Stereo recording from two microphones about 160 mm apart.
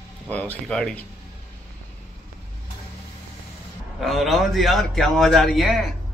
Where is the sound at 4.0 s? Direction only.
Centre (ahead or behind).